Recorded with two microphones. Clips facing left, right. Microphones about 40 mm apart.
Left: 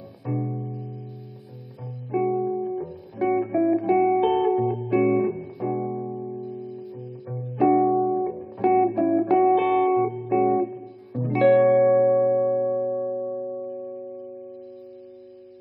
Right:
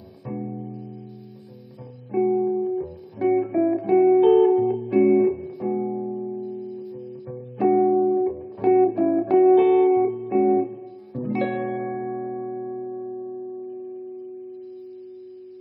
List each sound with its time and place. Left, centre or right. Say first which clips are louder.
0.2 s music: left 2 dB; centre
2.0 s music: right 3 dB; centre
12.0 s music: left 10 dB; centre